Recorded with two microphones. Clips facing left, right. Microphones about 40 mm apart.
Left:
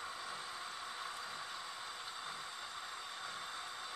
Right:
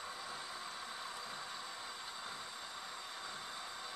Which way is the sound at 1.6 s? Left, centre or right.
Centre.